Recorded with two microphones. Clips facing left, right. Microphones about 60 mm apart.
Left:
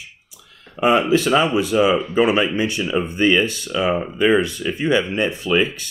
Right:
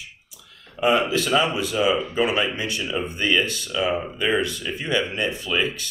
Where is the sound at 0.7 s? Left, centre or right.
Left.